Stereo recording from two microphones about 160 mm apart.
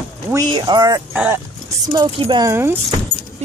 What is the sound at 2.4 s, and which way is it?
Speech, 15° right (ahead or behind).